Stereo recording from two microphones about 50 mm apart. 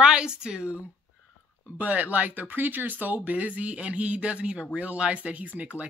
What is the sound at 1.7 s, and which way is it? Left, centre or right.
Speech, right.